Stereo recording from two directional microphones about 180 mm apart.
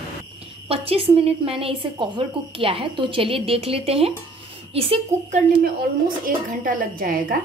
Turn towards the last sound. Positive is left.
turn(degrees=-50)  # may be behind; listen again after turning